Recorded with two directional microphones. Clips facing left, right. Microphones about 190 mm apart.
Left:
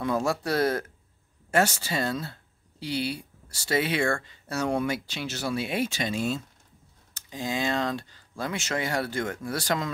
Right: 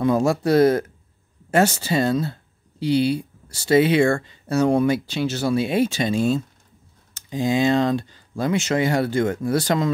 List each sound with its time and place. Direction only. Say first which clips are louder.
0.0 s speech: right 8 dB; 20° right (ahead or behind)